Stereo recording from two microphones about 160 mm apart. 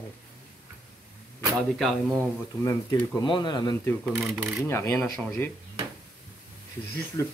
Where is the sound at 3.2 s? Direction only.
30° left (ahead or behind).